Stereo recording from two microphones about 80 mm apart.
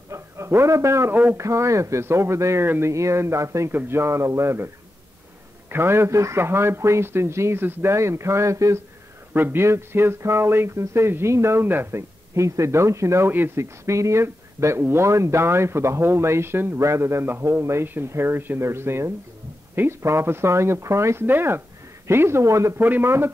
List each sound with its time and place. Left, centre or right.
0.1 s a sound: right
1.1 s a man's voice: right
1.4 s speech: right
5.7 s speech: right
9.3 s speech: right
13.3 s a man's voice: right
13.8 s speech: right
22.8 s a man's voice: right